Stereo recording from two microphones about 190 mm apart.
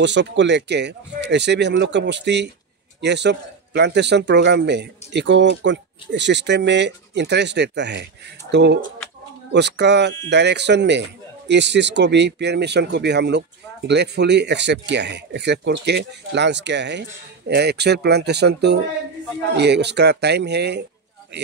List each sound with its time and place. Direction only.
0.0 s a man's voice: 65° right (ahead or behind)